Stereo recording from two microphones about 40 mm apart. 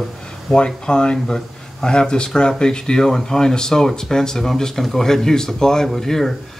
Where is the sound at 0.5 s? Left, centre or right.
Left.